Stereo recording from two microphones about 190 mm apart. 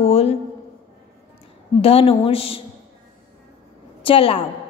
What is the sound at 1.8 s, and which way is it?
Speech, 30° left (ahead or behind).